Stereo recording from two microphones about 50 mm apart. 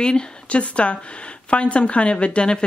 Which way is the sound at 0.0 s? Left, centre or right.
Centre.